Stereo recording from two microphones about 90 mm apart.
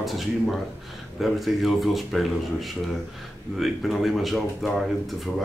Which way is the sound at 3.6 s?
Centre (ahead or behind).